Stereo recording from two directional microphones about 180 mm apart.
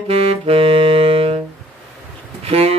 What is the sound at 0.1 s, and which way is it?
Saxophone, 35° right (ahead or behind).